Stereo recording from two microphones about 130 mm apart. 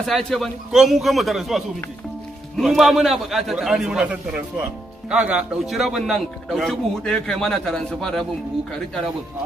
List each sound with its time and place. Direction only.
0.0 s a man's voice: 5° left (ahead or behind)